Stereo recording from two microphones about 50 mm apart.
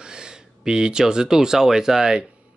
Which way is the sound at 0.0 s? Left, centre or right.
Centre.